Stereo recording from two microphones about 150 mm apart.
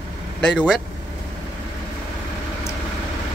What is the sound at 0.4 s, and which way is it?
Speech, 5° left (ahead or behind).